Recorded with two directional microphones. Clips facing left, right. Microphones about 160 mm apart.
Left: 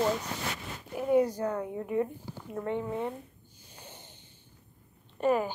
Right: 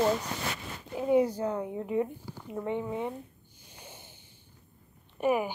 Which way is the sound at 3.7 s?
10° right (ahead or behind).